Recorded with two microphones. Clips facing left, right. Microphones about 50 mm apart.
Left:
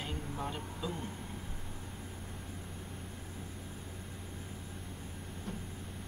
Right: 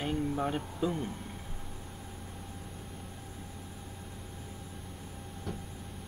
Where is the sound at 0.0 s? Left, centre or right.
Right.